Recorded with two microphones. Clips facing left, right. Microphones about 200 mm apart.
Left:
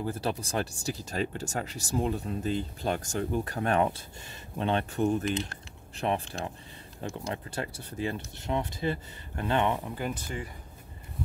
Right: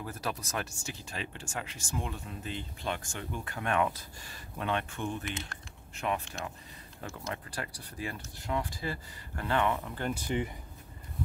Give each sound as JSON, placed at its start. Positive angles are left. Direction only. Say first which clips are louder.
{"t": 0.0, "sound": "speech", "louder": "left 6 dB", "side_deg": 30}
{"t": 7.5, "sound": "speech", "louder": "left 5 dB", "side_deg": 25}
{"t": 10.1, "sound": "speech", "louder": "right 5 dB", "side_deg": -20}